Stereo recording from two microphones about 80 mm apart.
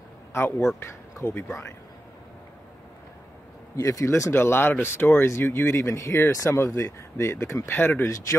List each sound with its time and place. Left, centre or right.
0.3 s speech: left
3.7 s speech: left
7.7 s speech: left
8.1 s speech: left